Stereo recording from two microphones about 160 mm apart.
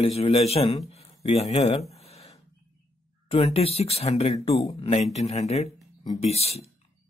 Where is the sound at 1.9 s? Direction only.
40° left (ahead or behind).